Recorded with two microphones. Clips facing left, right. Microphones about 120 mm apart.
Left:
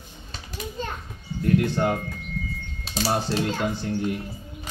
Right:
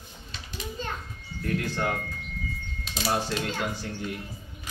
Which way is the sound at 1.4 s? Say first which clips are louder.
Left 7 dB; 25° left (ahead or behind).